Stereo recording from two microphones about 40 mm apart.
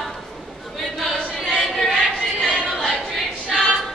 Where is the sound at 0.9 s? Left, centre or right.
Centre.